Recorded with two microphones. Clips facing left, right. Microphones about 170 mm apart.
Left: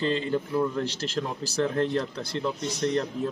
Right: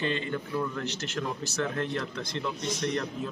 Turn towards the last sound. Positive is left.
turn(degrees=25)  # may be behind; listen again after turning